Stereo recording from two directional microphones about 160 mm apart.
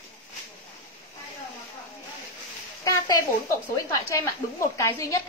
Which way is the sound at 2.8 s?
20° left (ahead or behind).